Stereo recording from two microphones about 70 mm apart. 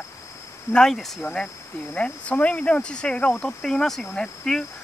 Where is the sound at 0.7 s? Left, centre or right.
Centre.